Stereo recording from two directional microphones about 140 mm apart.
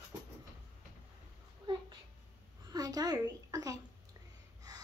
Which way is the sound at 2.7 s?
25° right (ahead or behind).